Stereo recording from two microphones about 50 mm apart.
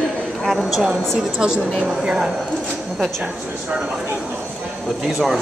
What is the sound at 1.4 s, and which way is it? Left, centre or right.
Speech, centre.